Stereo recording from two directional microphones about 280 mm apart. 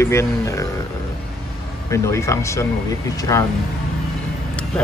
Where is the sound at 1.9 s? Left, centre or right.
Centre.